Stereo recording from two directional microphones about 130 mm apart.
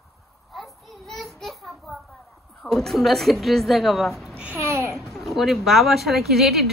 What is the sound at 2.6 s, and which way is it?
Speech, 5° left (ahead or behind).